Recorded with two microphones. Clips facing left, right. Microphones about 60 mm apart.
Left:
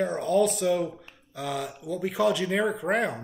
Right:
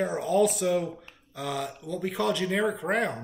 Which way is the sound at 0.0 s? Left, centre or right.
Centre.